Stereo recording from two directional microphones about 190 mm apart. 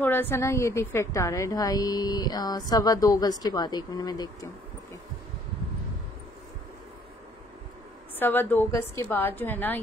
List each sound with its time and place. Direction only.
0.0 s a woman's voice: 10° left (ahead or behind)
8.2 s a woman's voice: 10° left (ahead or behind)